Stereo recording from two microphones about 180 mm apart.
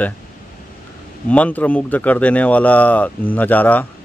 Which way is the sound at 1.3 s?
10° left (ahead or behind).